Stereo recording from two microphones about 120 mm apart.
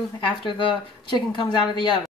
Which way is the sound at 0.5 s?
45° left (ahead or behind).